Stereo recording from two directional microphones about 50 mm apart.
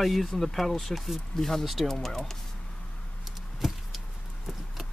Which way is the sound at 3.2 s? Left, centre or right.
Centre.